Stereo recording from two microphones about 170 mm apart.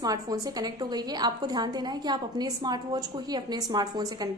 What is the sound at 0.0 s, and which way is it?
A woman's voice, 20° right (ahead or behind).